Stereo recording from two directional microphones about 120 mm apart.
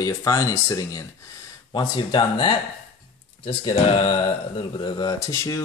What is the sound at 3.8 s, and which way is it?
Mantra, 50° left (ahead or behind).